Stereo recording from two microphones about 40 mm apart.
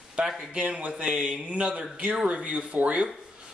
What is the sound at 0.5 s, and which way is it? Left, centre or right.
Speech, right.